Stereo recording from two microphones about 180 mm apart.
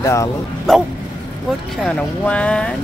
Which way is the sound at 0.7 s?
Centre (ahead or behind).